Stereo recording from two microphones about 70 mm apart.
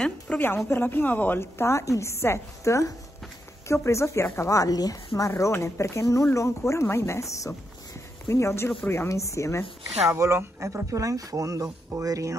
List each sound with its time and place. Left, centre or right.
0.3 s a woman's voice: left
5.3 s a woman's voice: left
9.1 s speech: left
10.0 s speech: right